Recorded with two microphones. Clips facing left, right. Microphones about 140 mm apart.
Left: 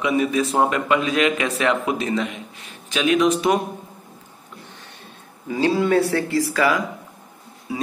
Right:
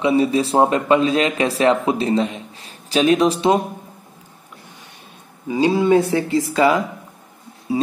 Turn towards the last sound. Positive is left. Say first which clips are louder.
# right 6 dB
turn(degrees=-25)  # may be behind; listen again after turning